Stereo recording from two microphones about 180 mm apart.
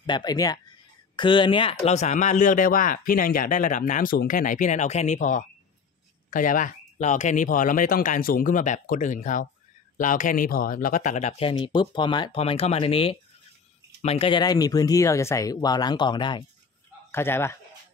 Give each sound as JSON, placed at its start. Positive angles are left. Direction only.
{"t": 0.0, "sound": "speech", "side_deg": 25}
{"t": 1.9, "sound": "a man's voice", "side_deg": 40}
{"t": 17.1, "sound": "speech", "side_deg": 15}